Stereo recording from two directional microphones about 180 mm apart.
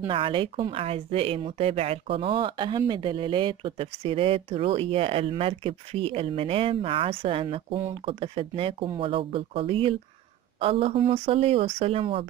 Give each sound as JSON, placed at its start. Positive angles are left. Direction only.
{"t": 0.1, "sound": "a woman's voice", "side_deg": -30}